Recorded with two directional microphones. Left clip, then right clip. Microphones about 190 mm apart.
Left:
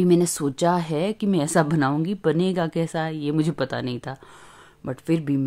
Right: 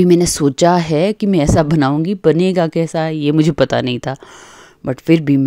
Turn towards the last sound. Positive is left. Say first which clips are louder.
# right 11 dB
turn(degrees=-40)  # may be behind; listen again after turning